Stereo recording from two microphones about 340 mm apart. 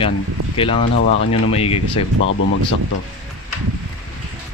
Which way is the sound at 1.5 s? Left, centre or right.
Centre.